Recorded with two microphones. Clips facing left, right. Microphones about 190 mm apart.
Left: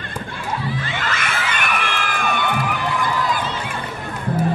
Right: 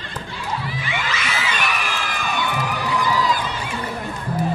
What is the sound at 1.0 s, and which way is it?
Crowd, 55° left (ahead or behind).